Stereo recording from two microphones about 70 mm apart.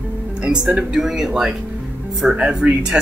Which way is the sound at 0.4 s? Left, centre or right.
Centre.